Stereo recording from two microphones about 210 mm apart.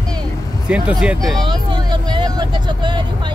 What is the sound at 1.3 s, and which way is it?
Vehicle, 25° right (ahead or behind).